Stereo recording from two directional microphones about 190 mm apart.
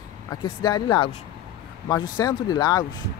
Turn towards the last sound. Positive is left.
turn(degrees=20)  # may be behind; listen again after turning